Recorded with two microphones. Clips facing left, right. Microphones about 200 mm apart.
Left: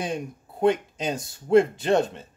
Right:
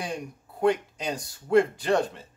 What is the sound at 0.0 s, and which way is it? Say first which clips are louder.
Speech: left 4 dB; 20° left (ahead or behind).